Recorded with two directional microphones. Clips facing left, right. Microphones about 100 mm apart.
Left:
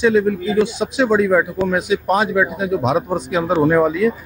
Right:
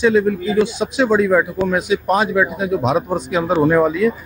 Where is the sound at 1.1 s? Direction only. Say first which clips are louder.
Even; centre (ahead or behind).